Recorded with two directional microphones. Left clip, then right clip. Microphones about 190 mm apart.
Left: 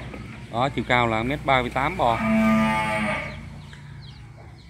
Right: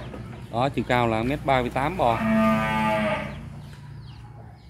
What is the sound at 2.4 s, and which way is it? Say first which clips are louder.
Music: left 1 dB; 50° left (ahead or behind).